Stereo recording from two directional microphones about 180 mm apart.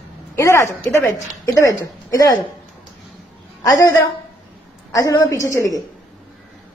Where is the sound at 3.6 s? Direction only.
20° left (ahead or behind).